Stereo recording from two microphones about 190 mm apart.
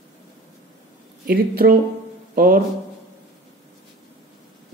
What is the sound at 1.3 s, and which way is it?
Speech, 50° right (ahead or behind).